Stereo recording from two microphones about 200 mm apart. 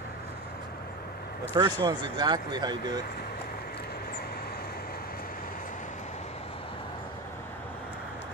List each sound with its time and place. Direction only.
1.5 s speech: 20° right (ahead or behind)